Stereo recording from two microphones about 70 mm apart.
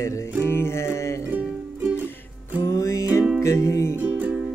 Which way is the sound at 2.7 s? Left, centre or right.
Left.